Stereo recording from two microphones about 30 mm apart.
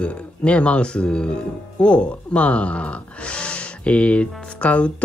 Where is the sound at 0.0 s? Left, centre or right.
Left.